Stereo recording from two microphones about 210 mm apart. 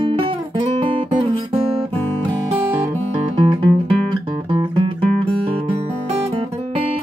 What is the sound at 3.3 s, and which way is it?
Music, 25° right (ahead or behind).